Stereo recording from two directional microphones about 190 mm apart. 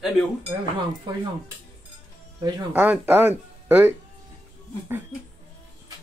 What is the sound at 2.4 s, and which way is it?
Speech, 20° right (ahead or behind).